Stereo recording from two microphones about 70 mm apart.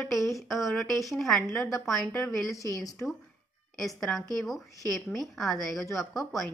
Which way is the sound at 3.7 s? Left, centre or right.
Centre.